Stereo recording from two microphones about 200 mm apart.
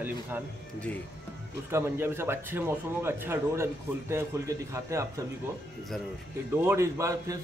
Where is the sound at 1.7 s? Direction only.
10° right (ahead or behind).